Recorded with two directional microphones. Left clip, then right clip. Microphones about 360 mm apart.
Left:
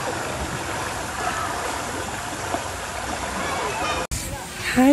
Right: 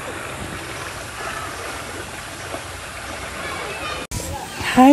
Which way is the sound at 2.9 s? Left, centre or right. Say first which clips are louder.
Left 3 dB; left.